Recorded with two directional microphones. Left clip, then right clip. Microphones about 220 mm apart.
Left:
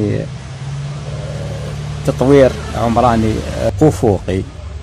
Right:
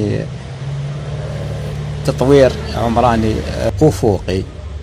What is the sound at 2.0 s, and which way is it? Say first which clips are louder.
Speech: left 1 dB; 25° left (ahead or behind).